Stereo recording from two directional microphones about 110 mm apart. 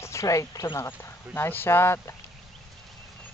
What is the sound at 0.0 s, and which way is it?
Speech, 25° left (ahead or behind).